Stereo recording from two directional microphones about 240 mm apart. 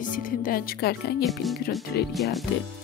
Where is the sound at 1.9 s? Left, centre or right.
Left.